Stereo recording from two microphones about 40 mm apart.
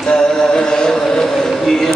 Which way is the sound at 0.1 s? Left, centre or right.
Centre.